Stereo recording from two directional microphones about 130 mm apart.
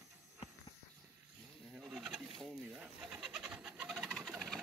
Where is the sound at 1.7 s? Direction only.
5° right (ahead or behind).